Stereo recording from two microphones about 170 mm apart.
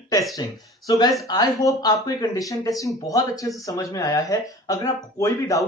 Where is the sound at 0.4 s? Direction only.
25° left (ahead or behind).